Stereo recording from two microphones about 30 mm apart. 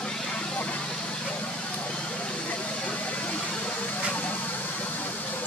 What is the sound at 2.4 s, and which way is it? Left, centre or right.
Vehicle, left.